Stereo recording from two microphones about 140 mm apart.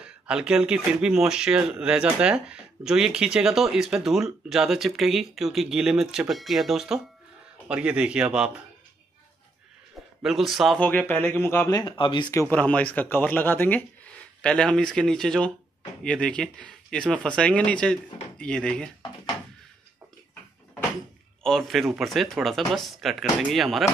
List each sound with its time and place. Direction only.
0.0 s a man's voice: 5° right (ahead or behind)
10.2 s speech: centre (ahead or behind)
10.8 s speech: 10° left (ahead or behind)
11.8 s speech: 35° left (ahead or behind)
12.4 s speech: 10° left (ahead or behind)
21.4 s speech: 5° left (ahead or behind)